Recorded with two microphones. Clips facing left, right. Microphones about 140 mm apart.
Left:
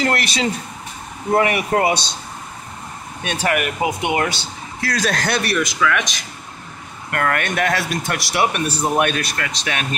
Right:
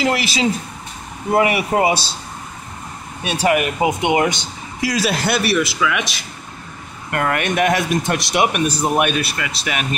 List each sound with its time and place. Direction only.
0.0 s speech: 5° right (ahead or behind)
3.3 s speech: 10° right (ahead or behind)
3.5 s speech: 20° right (ahead or behind)
7.1 s speech: 20° right (ahead or behind)